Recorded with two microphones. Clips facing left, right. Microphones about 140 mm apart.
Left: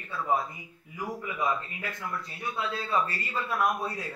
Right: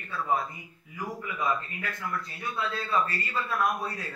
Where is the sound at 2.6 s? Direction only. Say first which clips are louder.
Right 1 dB; 10° left (ahead or behind).